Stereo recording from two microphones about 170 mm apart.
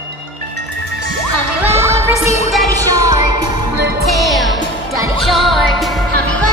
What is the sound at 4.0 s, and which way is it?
Music, centre (ahead or behind).